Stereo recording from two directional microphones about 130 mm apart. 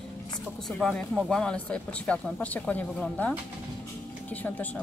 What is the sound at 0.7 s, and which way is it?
Speech, 5° left (ahead or behind).